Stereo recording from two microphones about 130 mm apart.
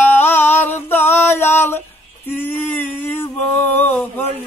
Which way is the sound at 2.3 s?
15° left (ahead or behind).